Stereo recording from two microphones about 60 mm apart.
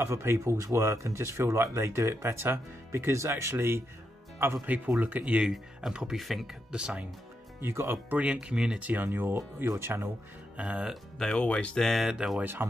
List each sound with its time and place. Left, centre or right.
0.0 s speech: right
4.6 s speech: right
5.8 s speech: centre
7.6 s speech: right
8.1 s speech: right
8.8 s speech: right
9.7 s speech: right
10.6 s speech: right
11.3 s speech: centre
12.1 s speech: centre
12.4 s speech: right